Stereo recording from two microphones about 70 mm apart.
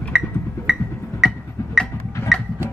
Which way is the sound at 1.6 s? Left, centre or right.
Left.